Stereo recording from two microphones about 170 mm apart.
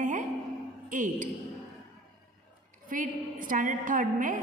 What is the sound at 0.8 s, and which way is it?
Speech, 50° right (ahead or behind).